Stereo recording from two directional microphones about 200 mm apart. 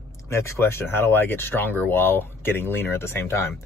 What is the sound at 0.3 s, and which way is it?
Speech, 15° left (ahead or behind).